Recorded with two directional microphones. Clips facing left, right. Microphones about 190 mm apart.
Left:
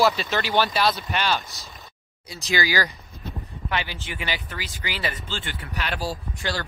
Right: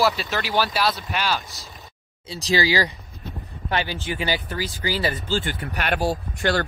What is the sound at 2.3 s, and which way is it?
Speech, 30° right (ahead or behind).